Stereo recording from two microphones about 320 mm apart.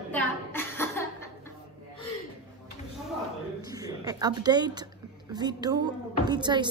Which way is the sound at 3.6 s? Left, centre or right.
Centre.